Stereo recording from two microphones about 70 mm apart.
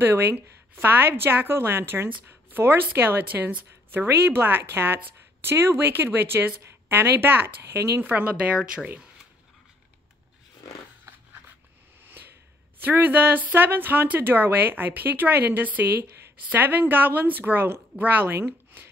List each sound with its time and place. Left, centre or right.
0.0 s speech: right; by 8.9 s centre
12.8 s speech: right